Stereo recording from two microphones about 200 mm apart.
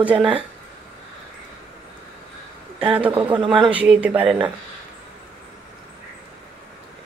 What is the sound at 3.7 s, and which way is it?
Speech, 5° right (ahead or behind).